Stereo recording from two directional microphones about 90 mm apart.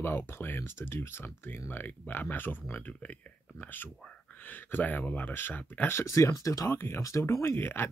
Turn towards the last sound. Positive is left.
turn(degrees=25)  # may be behind; listen again after turning